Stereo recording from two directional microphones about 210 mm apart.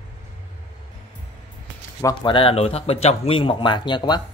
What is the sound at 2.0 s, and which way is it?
Speech, 20° left (ahead or behind).